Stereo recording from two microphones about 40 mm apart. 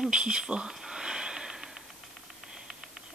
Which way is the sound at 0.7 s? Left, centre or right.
Centre.